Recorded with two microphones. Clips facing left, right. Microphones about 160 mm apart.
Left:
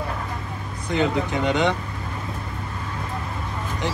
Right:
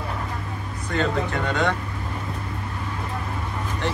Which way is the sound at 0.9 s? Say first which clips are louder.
Left 2 dB; 15° left (ahead or behind).